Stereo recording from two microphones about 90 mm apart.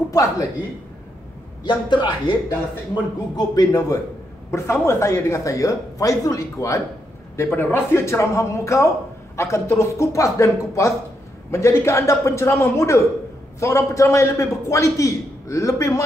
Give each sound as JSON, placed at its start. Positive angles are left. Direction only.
{"t": 0.1, "sound": "a woman's voice", "side_deg": 40}
{"t": 1.6, "sound": "a man's voice", "side_deg": 55}
{"t": 2.9, "sound": "speech", "side_deg": 50}
{"t": 4.5, "sound": "a man's voice", "side_deg": 30}
{"t": 7.4, "sound": "a man's voice", "side_deg": 20}